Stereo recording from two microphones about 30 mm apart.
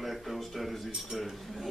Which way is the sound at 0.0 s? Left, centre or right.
Centre.